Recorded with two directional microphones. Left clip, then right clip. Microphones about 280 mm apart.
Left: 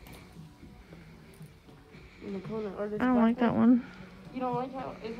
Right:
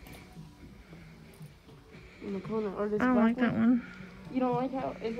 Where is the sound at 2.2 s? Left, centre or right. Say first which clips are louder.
Right 2 dB; centre.